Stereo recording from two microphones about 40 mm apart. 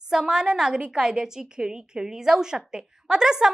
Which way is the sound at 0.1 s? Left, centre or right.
Centre.